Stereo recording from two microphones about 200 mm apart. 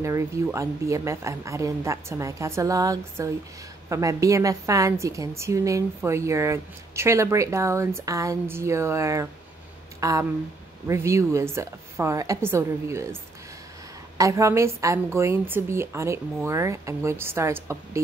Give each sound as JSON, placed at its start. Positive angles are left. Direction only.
{"t": 0.0, "sound": "a woman's voice", "side_deg": -15}